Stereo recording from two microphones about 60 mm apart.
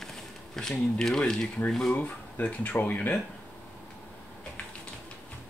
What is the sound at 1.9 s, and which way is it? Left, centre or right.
Speech, left.